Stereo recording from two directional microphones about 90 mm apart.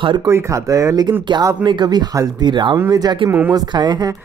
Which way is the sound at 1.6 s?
55° right (ahead or behind).